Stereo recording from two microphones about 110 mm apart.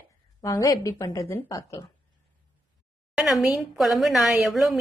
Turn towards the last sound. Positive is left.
turn(degrees=0)  # may be behind; listen again after turning